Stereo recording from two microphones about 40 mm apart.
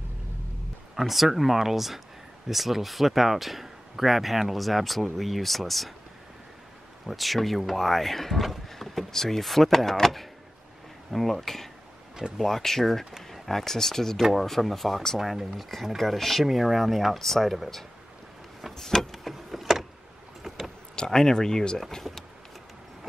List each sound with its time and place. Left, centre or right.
0.9 s speech: centre
7.1 s speech: centre
18.8 s vehicle: centre
19.1 s vehicle: centre
20.9 s speech: centre
22.0 s speech: centre